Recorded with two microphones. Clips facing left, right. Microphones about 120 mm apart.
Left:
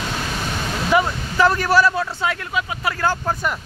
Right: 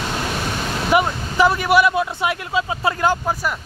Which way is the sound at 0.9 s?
15° right (ahead or behind).